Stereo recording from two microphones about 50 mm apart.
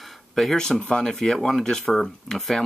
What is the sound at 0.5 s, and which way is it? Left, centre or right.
Speech, centre.